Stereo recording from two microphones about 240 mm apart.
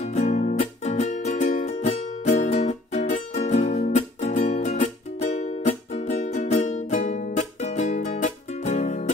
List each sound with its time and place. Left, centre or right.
0.0 s music: left